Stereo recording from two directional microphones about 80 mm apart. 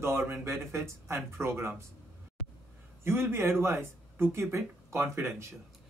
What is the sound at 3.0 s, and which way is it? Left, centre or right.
A man's voice, right.